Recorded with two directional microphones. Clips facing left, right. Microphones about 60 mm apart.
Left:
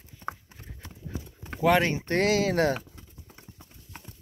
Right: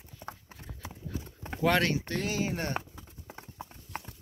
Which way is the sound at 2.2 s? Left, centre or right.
Left.